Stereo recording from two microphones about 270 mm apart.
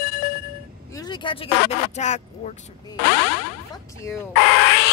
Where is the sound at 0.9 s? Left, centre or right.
Centre.